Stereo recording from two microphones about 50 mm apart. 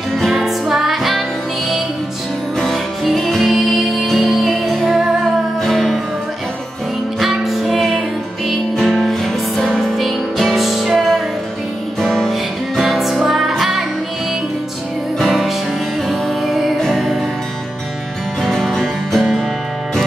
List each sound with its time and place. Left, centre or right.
0.2 s music: centre
2.6 s music: centre
7.2 s music: centre
12.0 s music: centre
15.1 s music: centre
18.4 s music: centre